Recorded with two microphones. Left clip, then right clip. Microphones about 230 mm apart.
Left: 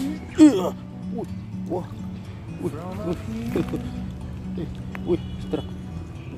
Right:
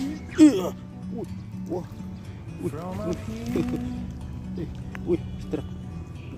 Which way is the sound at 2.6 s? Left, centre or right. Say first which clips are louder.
Left 1 dB; centre.